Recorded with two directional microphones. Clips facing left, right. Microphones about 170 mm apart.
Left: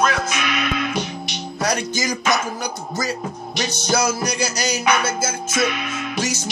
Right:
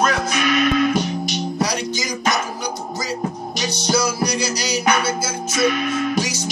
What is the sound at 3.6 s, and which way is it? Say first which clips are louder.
Music: right 1 dB; 50° left (ahead or behind).